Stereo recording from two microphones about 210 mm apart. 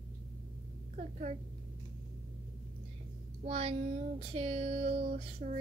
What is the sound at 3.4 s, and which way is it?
Child singing, 30° right (ahead or behind).